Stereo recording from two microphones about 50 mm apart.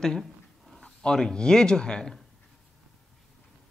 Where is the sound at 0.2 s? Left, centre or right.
Centre.